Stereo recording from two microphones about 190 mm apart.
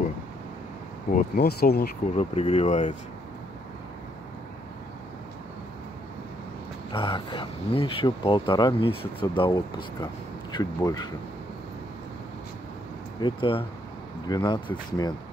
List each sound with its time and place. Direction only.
1.1 s speech: 50° left (ahead or behind)
2.1 s speech: 35° left (ahead or behind)
6.9 s speech: 25° left (ahead or behind)
13.2 s speech: 30° left (ahead or behind)